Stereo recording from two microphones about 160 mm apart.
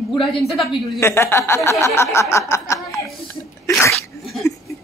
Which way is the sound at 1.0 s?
15° left (ahead or behind).